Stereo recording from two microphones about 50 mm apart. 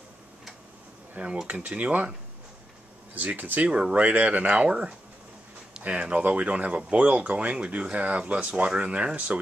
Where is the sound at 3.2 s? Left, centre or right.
Right.